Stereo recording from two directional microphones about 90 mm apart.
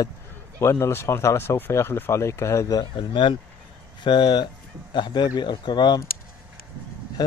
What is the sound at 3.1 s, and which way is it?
Speech, 70° left (ahead or behind).